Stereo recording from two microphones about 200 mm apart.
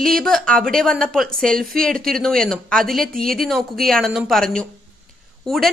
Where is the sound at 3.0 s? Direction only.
45° right (ahead or behind).